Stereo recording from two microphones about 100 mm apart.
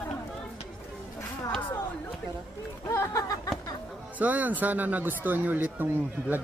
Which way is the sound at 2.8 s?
30° left (ahead or behind).